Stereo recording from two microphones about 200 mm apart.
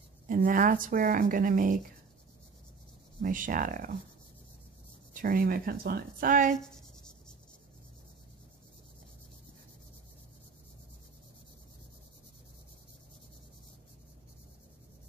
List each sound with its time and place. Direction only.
0.3 s speech: 45° right (ahead or behind)
3.2 s speech: 40° right (ahead or behind)
5.1 s speech: 45° right (ahead or behind)